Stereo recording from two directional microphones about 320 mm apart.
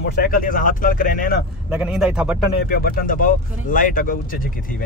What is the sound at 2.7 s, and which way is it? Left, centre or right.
Speech, left.